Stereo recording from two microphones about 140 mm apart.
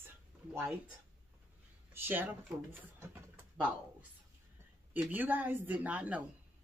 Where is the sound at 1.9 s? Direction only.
15° right (ahead or behind).